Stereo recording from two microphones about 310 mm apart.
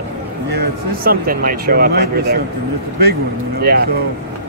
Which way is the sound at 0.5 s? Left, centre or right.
Right.